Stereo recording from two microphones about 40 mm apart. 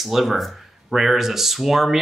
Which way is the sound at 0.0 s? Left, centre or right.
Centre.